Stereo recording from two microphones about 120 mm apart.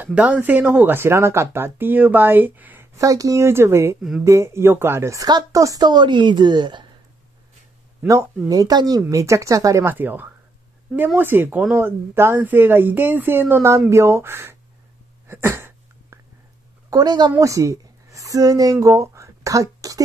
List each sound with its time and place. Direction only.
0.0 s a woman's voice: 10° right (ahead or behind); by 6.9 s 40° right (ahead or behind)
8.5 s a woman's voice: 35° right (ahead or behind)
15.2 s a sound: 20° right (ahead or behind)
16.9 s a woman's voice: 35° right (ahead or behind)